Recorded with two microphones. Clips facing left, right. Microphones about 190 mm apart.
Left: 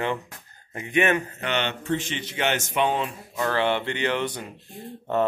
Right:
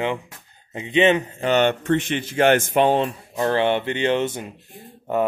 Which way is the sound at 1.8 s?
65° right (ahead or behind).